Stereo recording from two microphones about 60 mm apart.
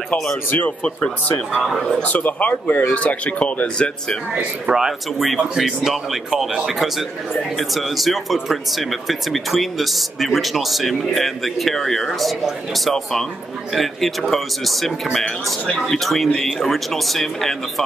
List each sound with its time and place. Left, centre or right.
0.5 s speech: left
1.5 s speech: centre
2.0 s speech: left
4.6 s speech: centre